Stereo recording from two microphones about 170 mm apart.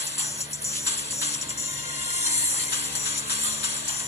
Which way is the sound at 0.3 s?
15° left (ahead or behind).